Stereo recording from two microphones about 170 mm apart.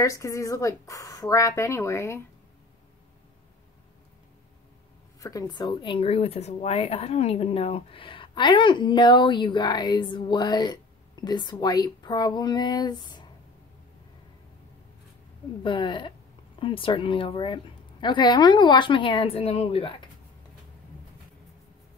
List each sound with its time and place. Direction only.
0.0 s speech: 20° left (ahead or behind)
5.2 s speech: 25° left (ahead or behind)
15.6 s speech: 30° left (ahead or behind)